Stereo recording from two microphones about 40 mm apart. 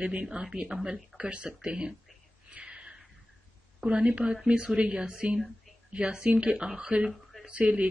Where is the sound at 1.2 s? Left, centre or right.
Right.